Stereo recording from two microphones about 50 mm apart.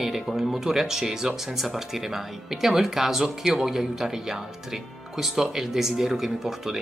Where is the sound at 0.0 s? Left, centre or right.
Centre.